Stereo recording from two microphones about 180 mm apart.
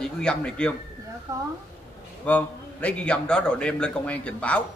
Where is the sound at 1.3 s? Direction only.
20° right (ahead or behind).